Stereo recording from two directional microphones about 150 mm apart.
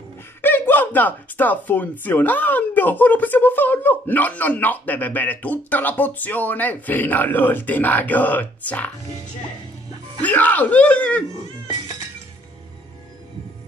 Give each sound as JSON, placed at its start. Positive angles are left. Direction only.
{"t": 0.4, "sound": "speech", "side_deg": 15}
{"t": 10.2, "sound": "speech", "side_deg": 10}